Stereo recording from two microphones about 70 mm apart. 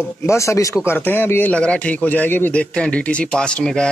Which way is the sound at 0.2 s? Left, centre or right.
Left.